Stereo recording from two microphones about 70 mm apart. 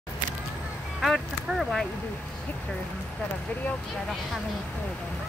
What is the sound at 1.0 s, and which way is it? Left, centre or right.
Speech, centre.